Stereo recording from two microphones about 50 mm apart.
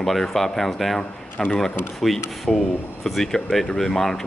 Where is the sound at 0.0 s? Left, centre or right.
Centre.